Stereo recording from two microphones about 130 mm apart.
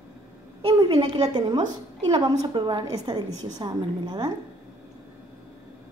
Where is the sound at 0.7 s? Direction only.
30° right (ahead or behind).